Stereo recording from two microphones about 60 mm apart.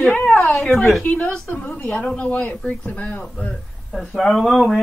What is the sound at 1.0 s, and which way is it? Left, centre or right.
Speech, left.